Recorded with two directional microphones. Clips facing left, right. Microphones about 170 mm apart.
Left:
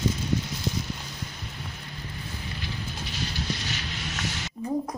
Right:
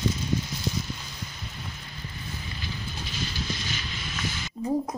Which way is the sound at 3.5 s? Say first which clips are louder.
Left 1 dB; 70° left (ahead or behind).